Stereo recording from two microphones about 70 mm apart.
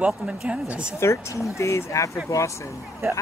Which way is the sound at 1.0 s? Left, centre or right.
Left.